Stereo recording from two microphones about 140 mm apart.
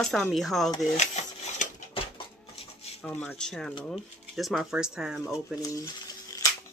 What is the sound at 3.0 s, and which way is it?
Speech, 10° left (ahead or behind).